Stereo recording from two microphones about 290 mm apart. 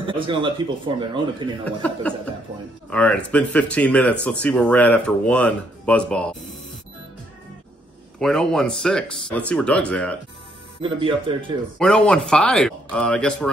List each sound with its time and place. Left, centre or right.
0.0 s speech: centre
1.8 s speech: centre
8.2 s speech: centre
10.8 s speech: centre
11.8 s speech: centre